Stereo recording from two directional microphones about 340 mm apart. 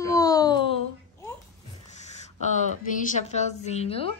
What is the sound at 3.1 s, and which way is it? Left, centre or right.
A woman's voice, centre.